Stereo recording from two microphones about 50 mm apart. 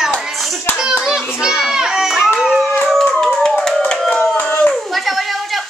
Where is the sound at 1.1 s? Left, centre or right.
Centre.